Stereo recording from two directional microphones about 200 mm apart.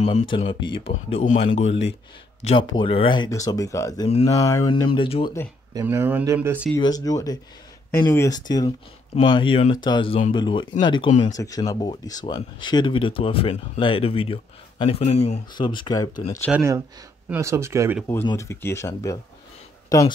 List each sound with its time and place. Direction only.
0.0 s speech: 30° left (ahead or behind)
1.5 s speech: 70° left (ahead or behind)
2.4 s speech: 25° left (ahead or behind)
5.8 s speech: 10° right (ahead or behind)
6.8 s speech: 20° left (ahead or behind)
11.1 s speech: 35° left (ahead or behind)
11.3 s speech: 15° left (ahead or behind)
16.5 s speech: 15° right (ahead or behind)
18.0 s speech: 15° left (ahead or behind)